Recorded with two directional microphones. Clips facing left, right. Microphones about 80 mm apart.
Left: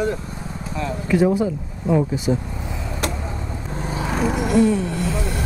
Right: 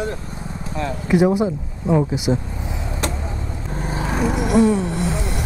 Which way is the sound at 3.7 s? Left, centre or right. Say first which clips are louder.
Right 1 dB; right.